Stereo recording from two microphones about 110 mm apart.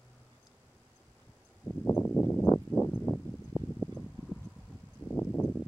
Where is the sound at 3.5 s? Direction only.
35° right (ahead or behind).